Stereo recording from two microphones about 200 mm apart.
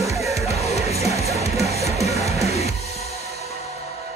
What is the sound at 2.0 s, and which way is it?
Music, 35° left (ahead or behind).